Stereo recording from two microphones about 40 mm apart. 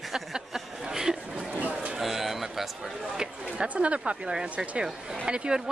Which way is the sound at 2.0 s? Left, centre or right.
Centre.